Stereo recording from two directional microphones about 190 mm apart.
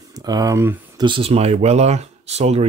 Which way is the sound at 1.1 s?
30° right (ahead or behind).